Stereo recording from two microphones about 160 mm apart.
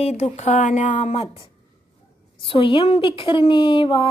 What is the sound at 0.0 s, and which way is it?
Speech, 45° left (ahead or behind).